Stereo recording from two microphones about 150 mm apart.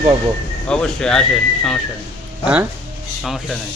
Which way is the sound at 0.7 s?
5° left (ahead or behind).